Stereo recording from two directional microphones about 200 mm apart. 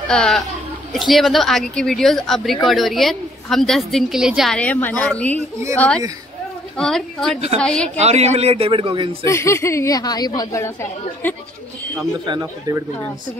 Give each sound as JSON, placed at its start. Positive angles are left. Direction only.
{"t": 0.1, "sound": "speech", "side_deg": 5}
{"t": 8.0, "sound": "a man's voice", "side_deg": -35}
{"t": 9.2, "sound": "a woman's voice", "side_deg": 15}
{"t": 12.3, "sound": "a man's voice", "side_deg": -20}